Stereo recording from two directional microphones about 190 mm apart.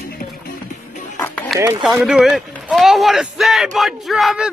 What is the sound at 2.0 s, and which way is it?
Speech, 5° right (ahead or behind).